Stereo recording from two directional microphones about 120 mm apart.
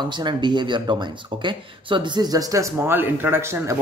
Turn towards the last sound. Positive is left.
turn(degrees=-20)  # may be behind; listen again after turning